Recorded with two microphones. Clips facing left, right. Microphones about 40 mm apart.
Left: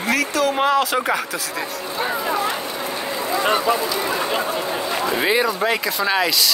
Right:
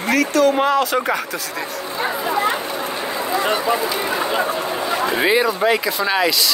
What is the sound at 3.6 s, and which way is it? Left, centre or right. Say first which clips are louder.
Speech: even; right.